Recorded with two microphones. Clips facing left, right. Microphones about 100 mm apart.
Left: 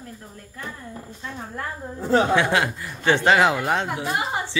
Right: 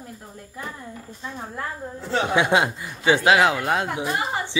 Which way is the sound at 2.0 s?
45° left (ahead or behind).